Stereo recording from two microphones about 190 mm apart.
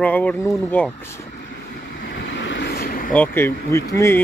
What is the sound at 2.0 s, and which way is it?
Vehicle, 65° left (ahead or behind).